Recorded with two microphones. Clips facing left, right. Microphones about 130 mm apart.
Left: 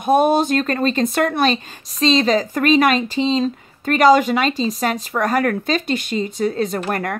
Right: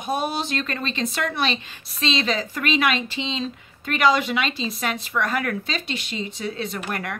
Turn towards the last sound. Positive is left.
turn(degrees=45)  # may be behind; listen again after turning